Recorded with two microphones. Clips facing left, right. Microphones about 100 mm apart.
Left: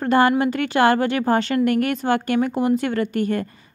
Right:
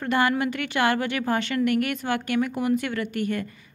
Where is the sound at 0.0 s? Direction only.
35° left (ahead or behind).